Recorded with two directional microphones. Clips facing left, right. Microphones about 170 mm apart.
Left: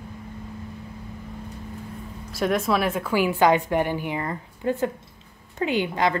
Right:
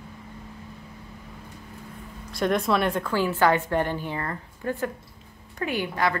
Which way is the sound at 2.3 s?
5° left (ahead or behind).